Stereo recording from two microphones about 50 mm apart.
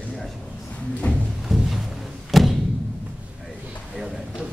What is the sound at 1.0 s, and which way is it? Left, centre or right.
Music, left.